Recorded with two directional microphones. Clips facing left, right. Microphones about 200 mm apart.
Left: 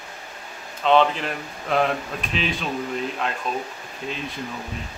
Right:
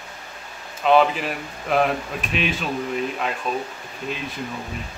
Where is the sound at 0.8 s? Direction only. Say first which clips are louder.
Right 1 dB; 5° right (ahead or behind).